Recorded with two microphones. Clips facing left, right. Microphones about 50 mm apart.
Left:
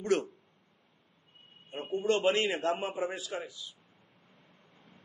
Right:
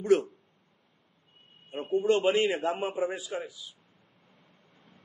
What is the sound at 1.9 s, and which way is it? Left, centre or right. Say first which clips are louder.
A man's voice: right 3 dB; centre.